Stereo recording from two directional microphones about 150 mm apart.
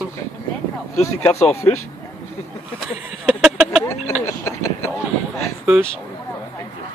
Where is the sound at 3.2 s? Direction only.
5° right (ahead or behind).